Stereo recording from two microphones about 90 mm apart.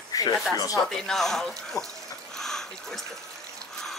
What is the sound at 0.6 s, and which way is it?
Speech, 40° left (ahead or behind).